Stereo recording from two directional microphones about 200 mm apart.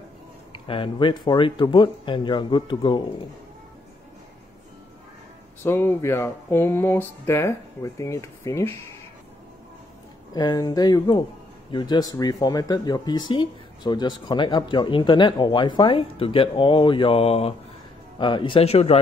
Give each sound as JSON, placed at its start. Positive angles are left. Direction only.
{"t": 0.5, "sound": "speech", "side_deg": 25}
{"t": 5.6, "sound": "speech", "side_deg": 10}
{"t": 10.3, "sound": "speech", "side_deg": 20}